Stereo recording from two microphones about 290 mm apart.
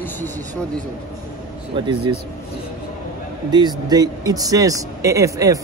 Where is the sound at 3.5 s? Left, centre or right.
Centre.